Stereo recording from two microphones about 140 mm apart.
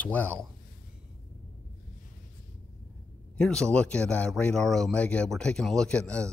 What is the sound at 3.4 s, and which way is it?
Speech, 5° left (ahead or behind).